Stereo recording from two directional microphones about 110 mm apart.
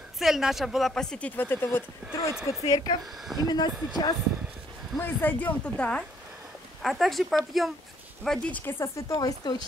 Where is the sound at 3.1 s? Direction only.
Centre (ahead or behind).